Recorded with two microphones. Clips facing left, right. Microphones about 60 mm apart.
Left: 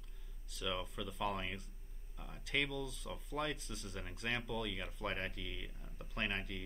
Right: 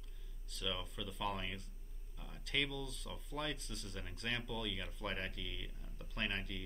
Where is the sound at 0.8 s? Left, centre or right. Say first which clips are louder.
Left 2 dB; centre.